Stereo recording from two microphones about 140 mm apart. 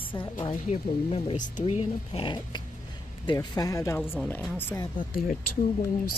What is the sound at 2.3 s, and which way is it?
Dog, 35° left (ahead or behind).